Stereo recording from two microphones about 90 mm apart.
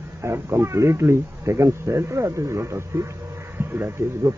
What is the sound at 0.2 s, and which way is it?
A man's voice, 30° right (ahead or behind).